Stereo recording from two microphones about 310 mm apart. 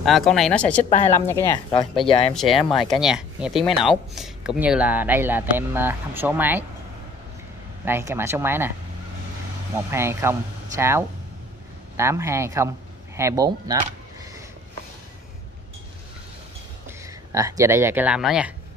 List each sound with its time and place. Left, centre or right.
0.0 s speech: centre
2.3 s speech: centre
7.8 s speech: centre
9.8 s speech: centre
16.8 s speech: centre